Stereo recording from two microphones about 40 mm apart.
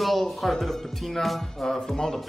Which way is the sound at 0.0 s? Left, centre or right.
Centre.